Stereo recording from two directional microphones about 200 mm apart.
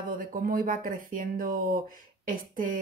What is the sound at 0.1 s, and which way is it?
Speech, 45° right (ahead or behind).